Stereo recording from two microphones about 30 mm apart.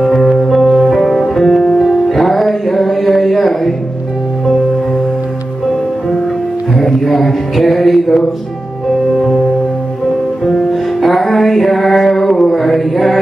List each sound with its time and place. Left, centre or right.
0.2 s music: centre
0.5 s music: centre
6.8 s music: centre
10.4 s music: centre
12.4 s mantra: centre